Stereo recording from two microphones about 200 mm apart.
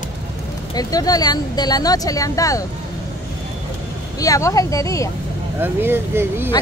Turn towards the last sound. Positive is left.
turn(degrees=-10)  # may be behind; listen again after turning